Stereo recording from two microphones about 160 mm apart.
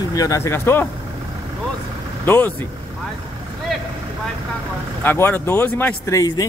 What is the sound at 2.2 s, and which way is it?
Speech, 10° left (ahead or behind).